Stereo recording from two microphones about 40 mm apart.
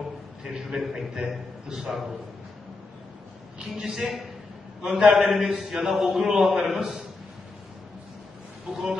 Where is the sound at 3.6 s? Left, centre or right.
Centre.